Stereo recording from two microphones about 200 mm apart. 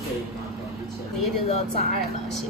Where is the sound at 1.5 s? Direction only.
30° left (ahead or behind).